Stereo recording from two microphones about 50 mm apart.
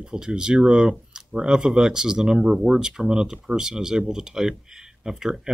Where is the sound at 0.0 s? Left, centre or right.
Centre.